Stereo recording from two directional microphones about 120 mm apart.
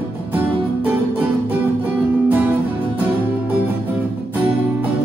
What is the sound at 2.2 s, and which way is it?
Music, 15° right (ahead or behind).